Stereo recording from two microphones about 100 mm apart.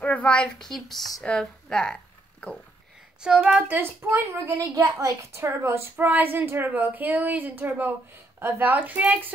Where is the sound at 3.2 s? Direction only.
10° right (ahead or behind).